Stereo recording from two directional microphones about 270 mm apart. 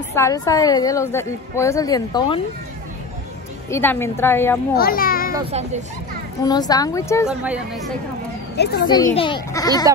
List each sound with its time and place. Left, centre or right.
0.1 s a woman's voice: centre
3.7 s a woman's voice: centre
4.7 s a child's voice: left
5.3 s a child's voice: right
6.4 s a woman's voice: centre
7.2 s a woman's voice: centre
8.8 s a woman's voice: centre